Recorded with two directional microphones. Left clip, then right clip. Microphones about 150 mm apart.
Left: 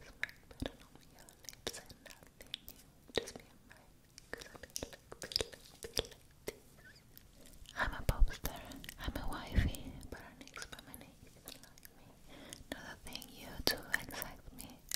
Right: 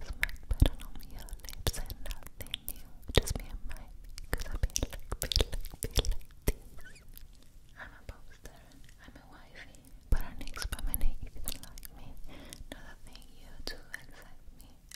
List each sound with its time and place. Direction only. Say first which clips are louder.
0.0 s whispering: right 8 dB; 30° right (ahead or behind)
5.3 s a sound: right 6 dB; 25° right (ahead or behind)
7.7 s whispering: left 11 dB; 40° left (ahead or behind)
10.0 s chewing: right 6 dB; 25° right (ahead or behind)
12.4 s whispering: left 3 dB; 5° left (ahead or behind)
13.0 s whispering: left 7 dB; 25° left (ahead or behind)